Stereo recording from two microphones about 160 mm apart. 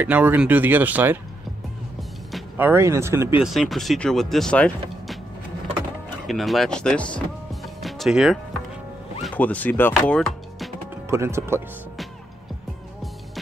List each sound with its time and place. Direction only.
0.0 s speech: 10° right (ahead or behind)
2.5 s speech: 15° right (ahead or behind)
3.4 s speech: centre (ahead or behind)
6.2 s speech: centre (ahead or behind)
9.2 s speech: 10° left (ahead or behind)
11.1 s speech: 15° right (ahead or behind)